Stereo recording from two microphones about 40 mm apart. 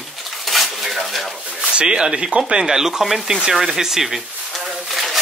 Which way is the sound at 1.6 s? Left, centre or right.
Right.